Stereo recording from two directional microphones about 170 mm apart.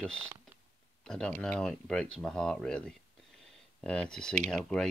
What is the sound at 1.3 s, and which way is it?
Speech, 5° left (ahead or behind).